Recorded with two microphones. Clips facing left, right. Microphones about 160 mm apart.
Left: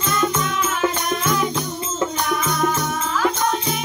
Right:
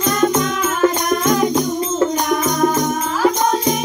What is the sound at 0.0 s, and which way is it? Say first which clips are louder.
Music: right 6 dB; 40° right (ahead or behind).